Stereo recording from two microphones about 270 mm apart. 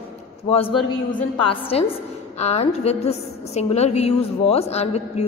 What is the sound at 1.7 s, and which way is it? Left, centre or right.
A woman's voice, left.